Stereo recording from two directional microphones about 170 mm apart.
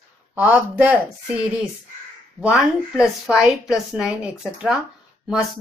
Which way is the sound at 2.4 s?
5° right (ahead or behind).